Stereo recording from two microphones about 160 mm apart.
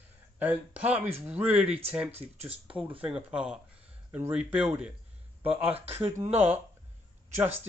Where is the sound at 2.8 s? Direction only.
10° right (ahead or behind).